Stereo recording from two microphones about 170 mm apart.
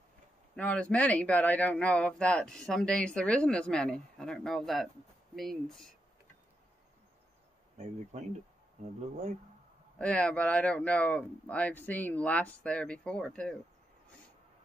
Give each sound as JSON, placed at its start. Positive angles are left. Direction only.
{"t": 0.6, "sound": "speech", "side_deg": 5}
{"t": 7.7, "sound": "speech", "side_deg": -45}
{"t": 9.9, "sound": "speech", "side_deg": 5}